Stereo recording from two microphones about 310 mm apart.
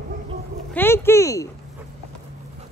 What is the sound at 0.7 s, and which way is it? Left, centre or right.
Speech, centre.